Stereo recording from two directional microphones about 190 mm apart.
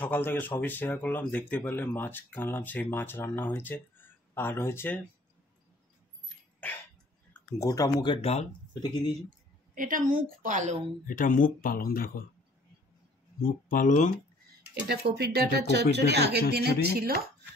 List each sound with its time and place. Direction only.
0.0 s speech: 10° left (ahead or behind)
7.3 s speech: 15° left (ahead or behind); by 8.5 s 35° left (ahead or behind)
9.8 s a woman's voice: 45° right (ahead or behind)
11.1 s speech: 45° left (ahead or behind)
13.4 s speech: 45° left (ahead or behind)
14.7 s a woman's voice: 60° right (ahead or behind)